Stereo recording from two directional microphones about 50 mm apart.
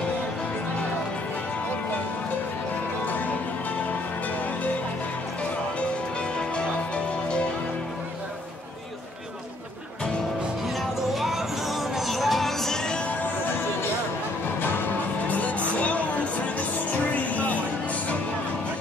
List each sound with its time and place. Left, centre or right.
6.3 s music: left
11.1 s music: centre
14.6 s music: left
15.8 s a sound: left
17.1 s music: left